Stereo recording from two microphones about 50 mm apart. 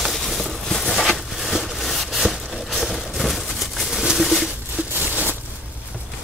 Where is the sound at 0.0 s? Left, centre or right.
Centre.